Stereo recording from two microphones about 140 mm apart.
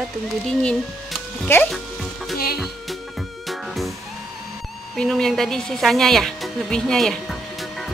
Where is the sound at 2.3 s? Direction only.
90° left.